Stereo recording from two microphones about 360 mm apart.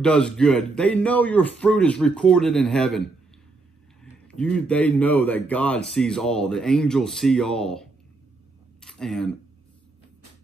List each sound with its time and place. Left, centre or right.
0.0 s speech: centre
4.0 s speech: centre